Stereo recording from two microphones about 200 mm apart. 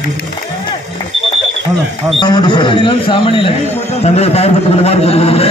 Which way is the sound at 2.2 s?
20° left (ahead or behind).